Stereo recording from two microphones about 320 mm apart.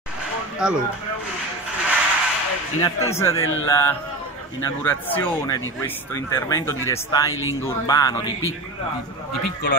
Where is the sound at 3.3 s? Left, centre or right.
Left.